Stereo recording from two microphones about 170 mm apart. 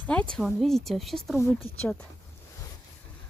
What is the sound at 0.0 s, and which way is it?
Speech, 5° left (ahead or behind).